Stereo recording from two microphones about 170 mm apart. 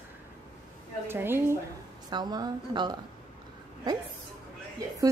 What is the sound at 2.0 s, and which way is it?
Speech, 25° right (ahead or behind).